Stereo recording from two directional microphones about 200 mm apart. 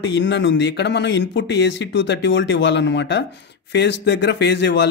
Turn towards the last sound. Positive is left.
turn(degrees=60)  # may be behind; listen again after turning